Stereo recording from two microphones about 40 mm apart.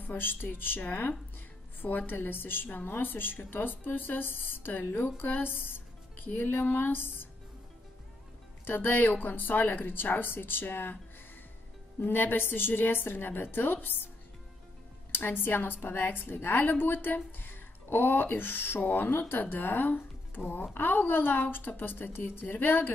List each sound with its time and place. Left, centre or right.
0.0 s a woman's voice: left
8.6 s a woman's voice: left
12.0 s a woman's voice: left